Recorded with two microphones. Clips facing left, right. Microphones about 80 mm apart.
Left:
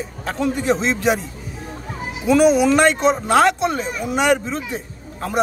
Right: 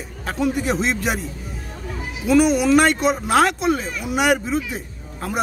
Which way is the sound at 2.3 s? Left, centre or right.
Centre.